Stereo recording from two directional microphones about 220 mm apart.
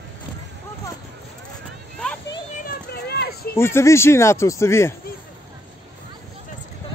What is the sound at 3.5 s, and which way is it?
Speech, 10° left (ahead or behind).